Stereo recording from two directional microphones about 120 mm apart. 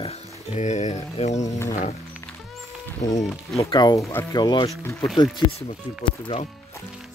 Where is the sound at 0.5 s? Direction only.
80° left.